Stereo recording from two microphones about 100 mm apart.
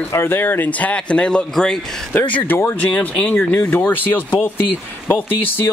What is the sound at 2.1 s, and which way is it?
Speech, 15° left (ahead or behind).